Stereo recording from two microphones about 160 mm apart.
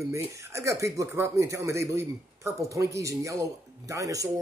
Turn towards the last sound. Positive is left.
turn(degrees=-20)  # may be behind; listen again after turning